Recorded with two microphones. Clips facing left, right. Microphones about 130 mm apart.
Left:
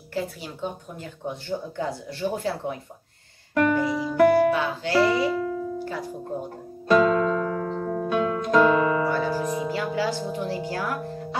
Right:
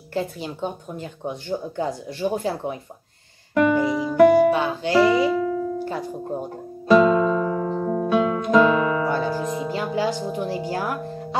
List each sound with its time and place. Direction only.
0.1 s speech: 25° right (ahead or behind)
3.5 s music: 10° right (ahead or behind)
5.3 s music: centre (ahead or behind)
6.9 s music: 10° right (ahead or behind)
9.7 s speech: 20° right (ahead or behind)